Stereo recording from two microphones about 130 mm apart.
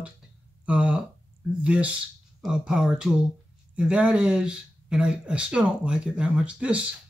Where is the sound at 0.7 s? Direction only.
10° right (ahead or behind).